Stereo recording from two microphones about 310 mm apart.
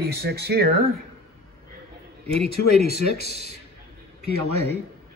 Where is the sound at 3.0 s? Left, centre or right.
Right.